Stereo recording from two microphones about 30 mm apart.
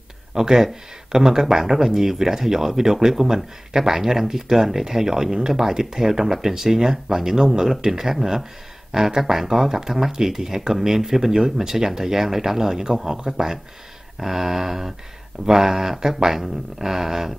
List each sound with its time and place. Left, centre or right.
0.3 s speech: centre